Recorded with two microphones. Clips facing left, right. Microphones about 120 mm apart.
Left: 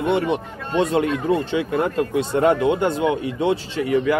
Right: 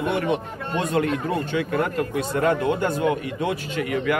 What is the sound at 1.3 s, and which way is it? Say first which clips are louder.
Speech: left 4 dB; 25° left (ahead or behind).